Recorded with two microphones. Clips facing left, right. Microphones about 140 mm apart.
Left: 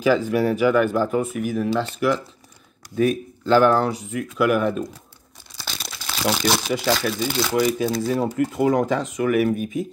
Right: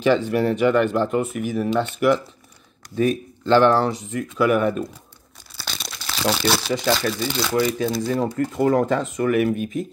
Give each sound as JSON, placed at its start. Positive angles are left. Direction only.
{"t": 0.0, "sound": "speech", "side_deg": 5}
{"t": 5.6, "sound": "crumpling", "side_deg": 5}
{"t": 7.0, "sound": "speech", "side_deg": 10}